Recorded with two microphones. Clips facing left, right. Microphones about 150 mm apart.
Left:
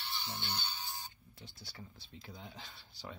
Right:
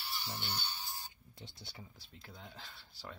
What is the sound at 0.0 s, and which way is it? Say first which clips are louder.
Music: even; 5° right (ahead or behind).